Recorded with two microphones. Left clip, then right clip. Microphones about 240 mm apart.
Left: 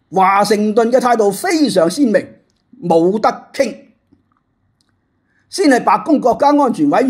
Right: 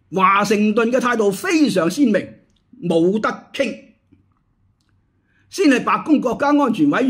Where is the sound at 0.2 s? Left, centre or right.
Centre.